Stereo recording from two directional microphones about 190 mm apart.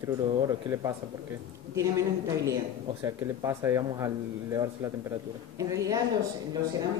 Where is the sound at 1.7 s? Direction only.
15° right (ahead or behind).